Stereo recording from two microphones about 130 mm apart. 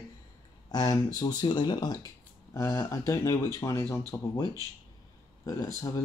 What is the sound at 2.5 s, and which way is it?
Speech, 20° left (ahead or behind).